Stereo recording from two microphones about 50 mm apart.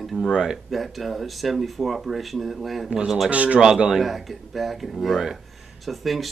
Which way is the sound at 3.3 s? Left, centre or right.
Right.